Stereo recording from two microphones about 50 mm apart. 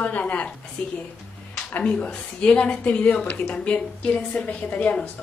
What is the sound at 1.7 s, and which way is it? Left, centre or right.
A woman's voice, left.